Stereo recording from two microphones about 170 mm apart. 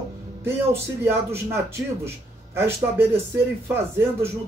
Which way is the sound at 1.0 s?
15° right (ahead or behind).